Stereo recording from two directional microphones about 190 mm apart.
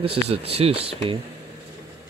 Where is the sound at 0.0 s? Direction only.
30° right (ahead or behind).